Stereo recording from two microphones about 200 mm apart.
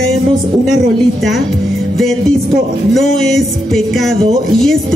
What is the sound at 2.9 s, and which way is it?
A woman's voice, centre (ahead or behind).